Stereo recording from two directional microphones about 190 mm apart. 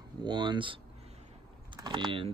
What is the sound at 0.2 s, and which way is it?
Speech, 25° right (ahead or behind).